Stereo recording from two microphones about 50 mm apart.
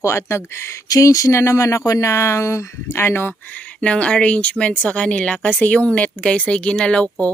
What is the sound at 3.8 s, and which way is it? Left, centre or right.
A woman's voice, left.